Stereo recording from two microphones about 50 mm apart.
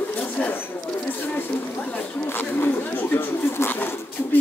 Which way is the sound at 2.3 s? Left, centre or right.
Left.